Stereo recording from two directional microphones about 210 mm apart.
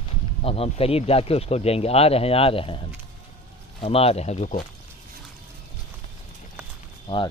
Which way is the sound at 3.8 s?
30° left (ahead or behind).